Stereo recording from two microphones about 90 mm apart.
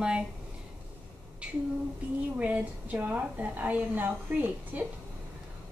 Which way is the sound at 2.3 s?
15° right (ahead or behind).